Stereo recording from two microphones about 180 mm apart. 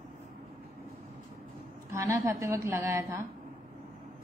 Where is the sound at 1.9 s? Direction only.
15° right (ahead or behind).